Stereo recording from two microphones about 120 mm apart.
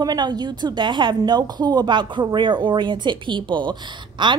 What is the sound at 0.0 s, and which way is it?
A woman's voice, 35° right (ahead or behind).